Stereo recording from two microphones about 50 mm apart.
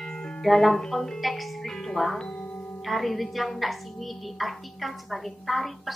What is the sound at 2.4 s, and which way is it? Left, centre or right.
Music, left.